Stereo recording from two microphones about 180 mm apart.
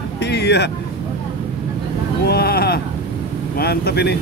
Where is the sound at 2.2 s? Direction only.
60° left (ahead or behind).